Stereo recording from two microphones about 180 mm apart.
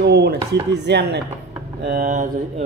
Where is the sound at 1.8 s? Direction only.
55° right (ahead or behind).